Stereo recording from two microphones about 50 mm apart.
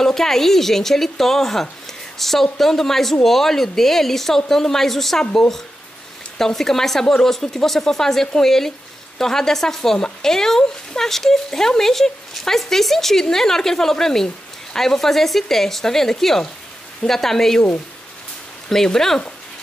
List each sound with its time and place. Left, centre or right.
0.0 s speech: centre
6.3 s speech: centre
18.7 s speech: centre